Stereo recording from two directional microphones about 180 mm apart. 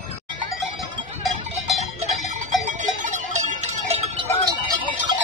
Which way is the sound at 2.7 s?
45° right (ahead or behind).